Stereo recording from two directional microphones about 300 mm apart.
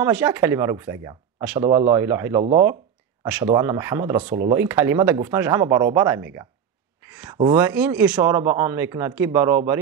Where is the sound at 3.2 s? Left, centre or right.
Centre.